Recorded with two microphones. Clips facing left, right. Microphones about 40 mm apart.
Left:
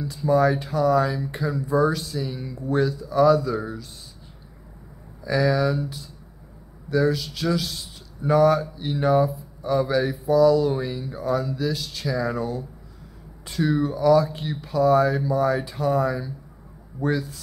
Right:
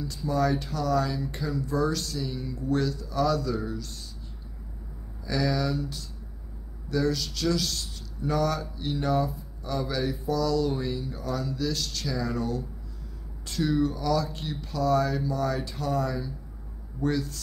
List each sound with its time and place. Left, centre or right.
0.0 s speech: centre
5.2 s speech: centre